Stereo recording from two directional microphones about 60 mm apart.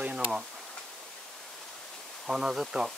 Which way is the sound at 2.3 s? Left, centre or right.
Centre.